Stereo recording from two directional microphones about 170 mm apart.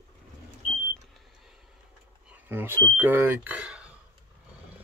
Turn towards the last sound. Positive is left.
turn(degrees=-5)  # may be behind; listen again after turning